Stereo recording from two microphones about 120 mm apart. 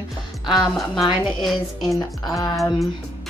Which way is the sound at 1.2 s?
Centre (ahead or behind).